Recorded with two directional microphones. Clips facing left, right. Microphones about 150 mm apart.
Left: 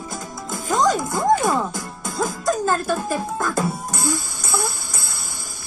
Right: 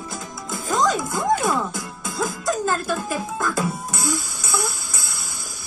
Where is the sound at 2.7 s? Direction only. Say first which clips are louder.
Left 2 dB; 45° left (ahead or behind).